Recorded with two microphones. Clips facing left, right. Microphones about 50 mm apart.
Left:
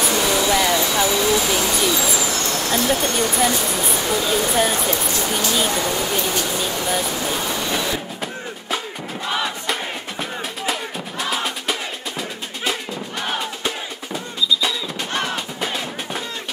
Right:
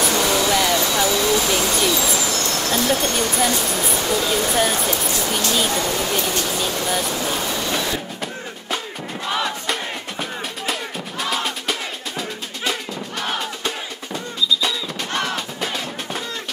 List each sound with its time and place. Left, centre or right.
0.0 s a sound: centre
1.9 s vehicle: centre
2.7 s speech: centre
10.7 s music: centre
13.7 s music: centre